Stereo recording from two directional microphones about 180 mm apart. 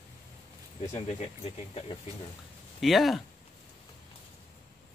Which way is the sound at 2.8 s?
Centre (ahead or behind).